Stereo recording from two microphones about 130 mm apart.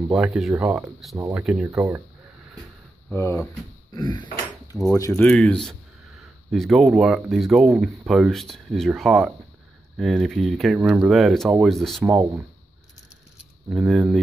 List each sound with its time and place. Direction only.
0.1 s speech: 5° right (ahead or behind)
1.7 s speech: 20° right (ahead or behind)
3.2 s speech: 20° left (ahead or behind)
3.9 s a sound: 35° left (ahead or behind)
4.7 s speech: centre (ahead or behind)
5.1 s speech: 10° left (ahead or behind)
12.0 s speech: 15° right (ahead or behind)
13.4 s a sound: 5° right (ahead or behind)